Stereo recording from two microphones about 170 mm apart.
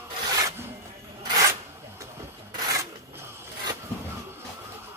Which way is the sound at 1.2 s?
20° right (ahead or behind).